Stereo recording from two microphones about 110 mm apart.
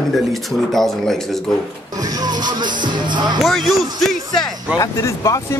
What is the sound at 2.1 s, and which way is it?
Speech, 40° right (ahead or behind).